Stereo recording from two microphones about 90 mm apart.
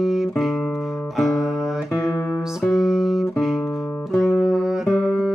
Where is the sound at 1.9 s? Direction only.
30° left (ahead or behind).